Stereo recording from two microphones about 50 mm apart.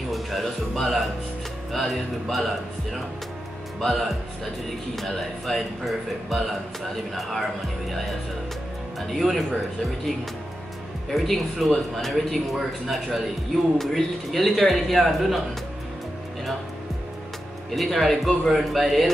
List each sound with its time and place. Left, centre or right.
0.1 s a man's voice: centre
9.1 s a man's voice: centre
11.1 s a man's voice: centre
17.7 s a man's voice: centre